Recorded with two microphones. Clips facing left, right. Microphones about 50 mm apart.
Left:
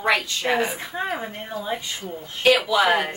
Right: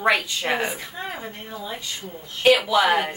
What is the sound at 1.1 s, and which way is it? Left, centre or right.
Speech, centre.